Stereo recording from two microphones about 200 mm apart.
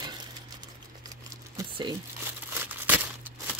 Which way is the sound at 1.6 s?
20° right (ahead or behind).